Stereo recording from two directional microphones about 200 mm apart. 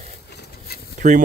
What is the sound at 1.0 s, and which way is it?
Speech, 35° right (ahead or behind).